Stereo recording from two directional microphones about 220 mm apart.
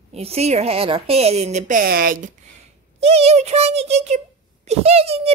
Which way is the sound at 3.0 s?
30° right (ahead or behind).